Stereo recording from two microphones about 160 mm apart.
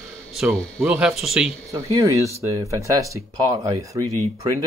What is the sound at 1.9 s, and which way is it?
Speech, 20° right (ahead or behind).